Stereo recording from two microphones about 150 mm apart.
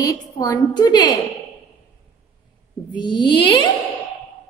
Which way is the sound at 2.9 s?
30° left (ahead or behind).